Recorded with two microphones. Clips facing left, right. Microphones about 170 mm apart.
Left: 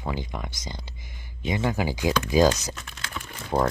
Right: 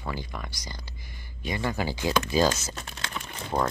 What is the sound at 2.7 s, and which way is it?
Typing, 30° right (ahead or behind).